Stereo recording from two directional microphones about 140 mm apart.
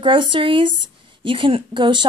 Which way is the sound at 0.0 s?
35° right (ahead or behind).